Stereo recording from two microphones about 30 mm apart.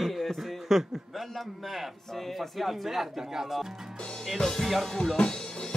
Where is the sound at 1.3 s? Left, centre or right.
Centre.